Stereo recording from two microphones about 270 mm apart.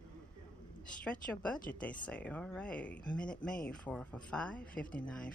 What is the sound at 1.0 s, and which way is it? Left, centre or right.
Speech, centre.